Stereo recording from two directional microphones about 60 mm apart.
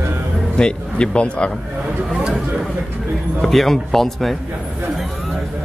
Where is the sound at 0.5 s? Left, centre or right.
Centre.